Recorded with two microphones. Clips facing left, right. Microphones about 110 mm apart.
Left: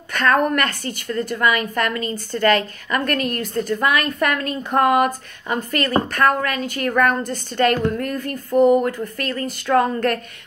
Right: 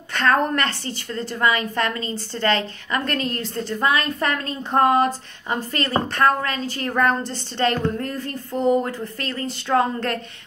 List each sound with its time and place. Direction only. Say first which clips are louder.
0.1 s a woman's voice: left 2 dB; 25° right (ahead or behind)